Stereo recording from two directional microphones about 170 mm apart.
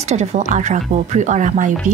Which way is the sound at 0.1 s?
45° right (ahead or behind).